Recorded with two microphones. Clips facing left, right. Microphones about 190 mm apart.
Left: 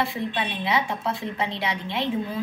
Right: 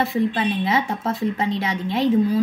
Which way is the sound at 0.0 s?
40° right (ahead or behind).